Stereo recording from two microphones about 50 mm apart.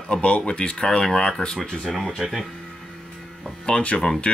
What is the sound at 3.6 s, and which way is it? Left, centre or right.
Speech, left.